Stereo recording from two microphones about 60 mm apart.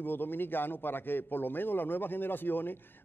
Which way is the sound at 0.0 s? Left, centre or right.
Left.